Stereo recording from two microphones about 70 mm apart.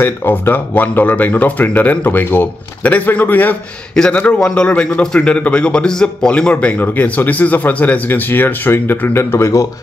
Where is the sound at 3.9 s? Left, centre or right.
Centre.